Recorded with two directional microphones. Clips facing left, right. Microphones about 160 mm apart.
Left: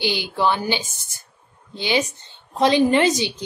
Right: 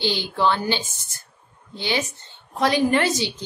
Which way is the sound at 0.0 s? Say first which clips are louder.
Left 1 dB; 15° left (ahead or behind).